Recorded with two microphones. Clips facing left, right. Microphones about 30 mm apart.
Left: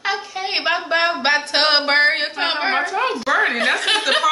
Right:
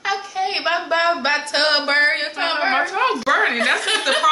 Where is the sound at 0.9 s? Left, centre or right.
Left.